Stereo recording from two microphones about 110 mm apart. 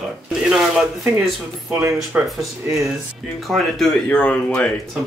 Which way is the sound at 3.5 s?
5° left (ahead or behind).